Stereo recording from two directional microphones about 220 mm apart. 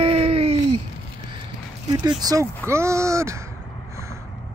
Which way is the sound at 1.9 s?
15° right (ahead or behind).